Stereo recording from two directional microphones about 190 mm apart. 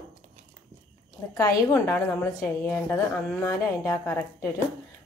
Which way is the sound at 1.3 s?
15° left (ahead or behind).